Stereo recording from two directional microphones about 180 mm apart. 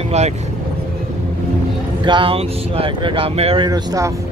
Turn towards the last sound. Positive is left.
turn(degrees=-20)  # may be behind; listen again after turning